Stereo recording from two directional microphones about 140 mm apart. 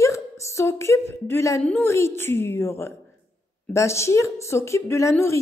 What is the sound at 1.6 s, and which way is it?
Speech, 5° left (ahead or behind).